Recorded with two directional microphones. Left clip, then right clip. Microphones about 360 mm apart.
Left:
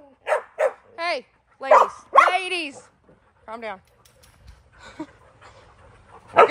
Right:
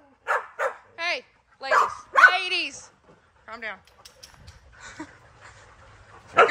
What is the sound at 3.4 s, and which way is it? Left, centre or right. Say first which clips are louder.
Speech: left 2 dB; centre.